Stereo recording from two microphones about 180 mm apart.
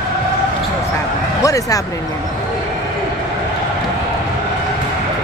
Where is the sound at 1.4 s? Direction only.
20° left (ahead or behind).